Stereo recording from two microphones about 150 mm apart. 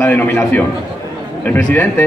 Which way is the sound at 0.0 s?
10° left (ahead or behind).